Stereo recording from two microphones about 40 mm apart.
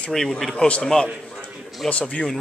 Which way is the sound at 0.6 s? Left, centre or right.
Left.